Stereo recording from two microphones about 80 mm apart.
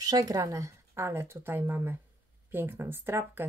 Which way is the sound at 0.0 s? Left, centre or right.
Right.